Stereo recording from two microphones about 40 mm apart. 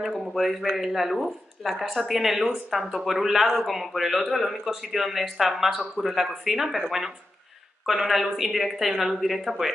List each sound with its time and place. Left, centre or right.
0.0 s speech: centre
7.8 s speech: centre